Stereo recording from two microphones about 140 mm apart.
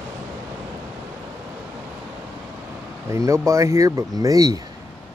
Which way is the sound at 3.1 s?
20° right (ahead or behind).